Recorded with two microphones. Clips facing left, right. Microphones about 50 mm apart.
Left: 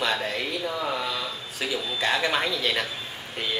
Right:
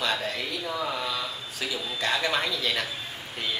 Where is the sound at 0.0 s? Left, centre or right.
Centre.